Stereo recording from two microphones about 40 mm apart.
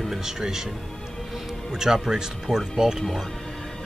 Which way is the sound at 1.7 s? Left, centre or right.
Centre.